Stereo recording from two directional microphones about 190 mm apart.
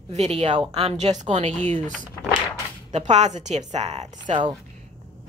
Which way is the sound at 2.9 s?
35° right (ahead or behind).